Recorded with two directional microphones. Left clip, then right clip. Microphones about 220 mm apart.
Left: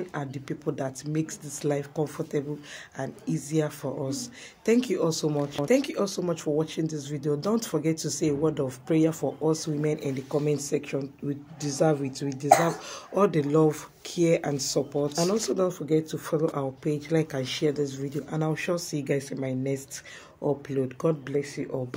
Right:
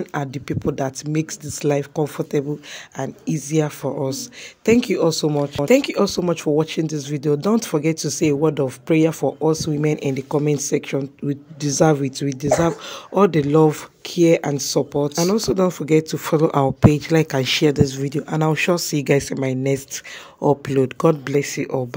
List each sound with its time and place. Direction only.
0.1 s speech: 40° right (ahead or behind)